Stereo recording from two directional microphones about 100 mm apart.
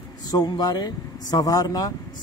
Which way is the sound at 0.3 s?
40° left (ahead or behind).